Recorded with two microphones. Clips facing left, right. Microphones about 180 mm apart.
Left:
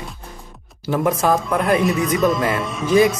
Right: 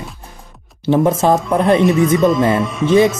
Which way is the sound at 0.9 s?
25° right (ahead or behind).